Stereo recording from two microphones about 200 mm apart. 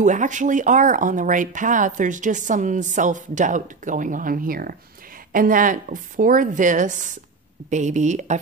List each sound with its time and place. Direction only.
0.0 s speech: 40° right (ahead or behind)